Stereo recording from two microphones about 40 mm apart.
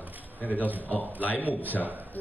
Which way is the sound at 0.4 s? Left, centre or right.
Left.